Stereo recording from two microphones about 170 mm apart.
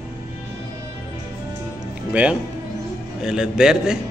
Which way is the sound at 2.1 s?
5° right (ahead or behind).